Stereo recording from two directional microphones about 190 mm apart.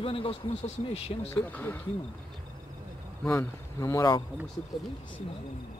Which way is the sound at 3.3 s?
15° left (ahead or behind).